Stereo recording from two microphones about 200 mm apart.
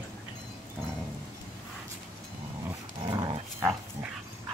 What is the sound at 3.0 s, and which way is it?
Dog, 20° right (ahead or behind).